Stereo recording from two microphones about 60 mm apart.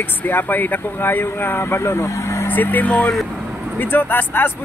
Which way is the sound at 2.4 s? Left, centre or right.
Left.